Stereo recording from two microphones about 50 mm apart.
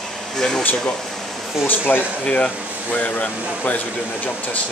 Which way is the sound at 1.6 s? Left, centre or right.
Left.